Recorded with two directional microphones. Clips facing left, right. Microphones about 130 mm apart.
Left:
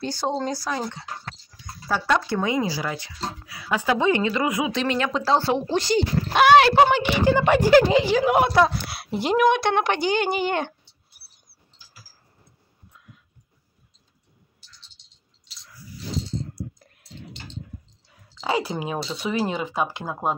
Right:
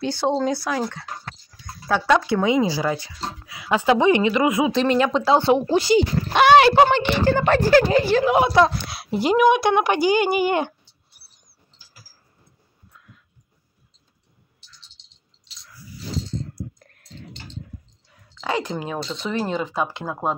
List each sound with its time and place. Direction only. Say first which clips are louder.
0.4 s speech: right 4 dB; 5° right (ahead or behind)
2.0 s a woman's voice: right 5 dB; 10° right (ahead or behind); by 3.5 s 30° right (ahead or behind)
3.5 s a woman's voice: right 5 dB; 20° right (ahead or behind)
5.2 s a woman's voice: right 4 dB; 15° right (ahead or behind)
11.1 s dog: right 3 dB; 5° left (ahead or behind)
18.3 s speech: even; 10° left (ahead or behind)